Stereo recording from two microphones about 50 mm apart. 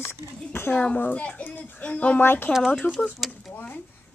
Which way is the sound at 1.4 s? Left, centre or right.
Left.